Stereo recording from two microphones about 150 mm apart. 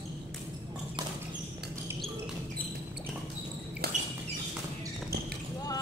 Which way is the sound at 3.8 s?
90° right.